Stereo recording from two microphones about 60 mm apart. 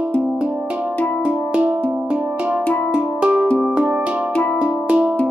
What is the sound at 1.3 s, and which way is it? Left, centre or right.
Music, centre.